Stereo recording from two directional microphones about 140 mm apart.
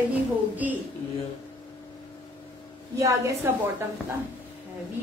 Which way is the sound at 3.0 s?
20° right (ahead or behind).